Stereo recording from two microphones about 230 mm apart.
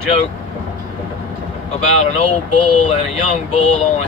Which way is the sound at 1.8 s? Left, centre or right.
Left.